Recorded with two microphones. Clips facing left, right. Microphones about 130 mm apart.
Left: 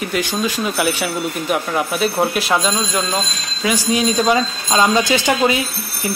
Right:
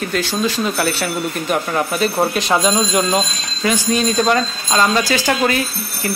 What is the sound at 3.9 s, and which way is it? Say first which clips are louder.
Speech: left 1 dB; 10° left (ahead or behind).